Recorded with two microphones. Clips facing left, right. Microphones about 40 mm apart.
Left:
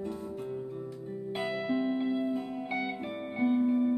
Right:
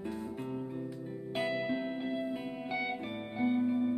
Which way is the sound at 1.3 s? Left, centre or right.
Centre.